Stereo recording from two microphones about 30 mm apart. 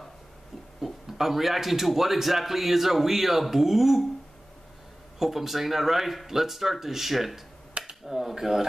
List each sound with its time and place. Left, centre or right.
0.7 s a man's voice: centre
5.2 s a man's voice: centre
7.8 s finger snapping: right
8.1 s a man's voice: centre